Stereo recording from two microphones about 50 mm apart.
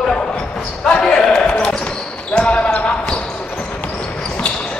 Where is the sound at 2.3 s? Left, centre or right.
Left.